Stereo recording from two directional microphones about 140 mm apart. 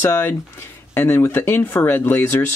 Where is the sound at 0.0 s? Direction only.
15° left (ahead or behind).